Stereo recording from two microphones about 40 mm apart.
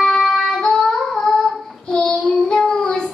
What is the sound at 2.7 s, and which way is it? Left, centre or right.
Child singing, centre.